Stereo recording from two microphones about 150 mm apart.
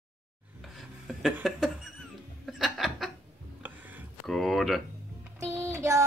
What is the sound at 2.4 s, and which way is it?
Chuckle, centre (ahead or behind).